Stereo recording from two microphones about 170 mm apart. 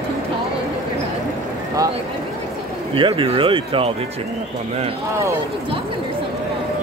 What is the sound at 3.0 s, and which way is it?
Speech, 30° right (ahead or behind).